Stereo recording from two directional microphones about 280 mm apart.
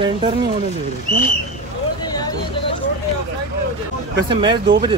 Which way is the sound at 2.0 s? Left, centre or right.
Centre.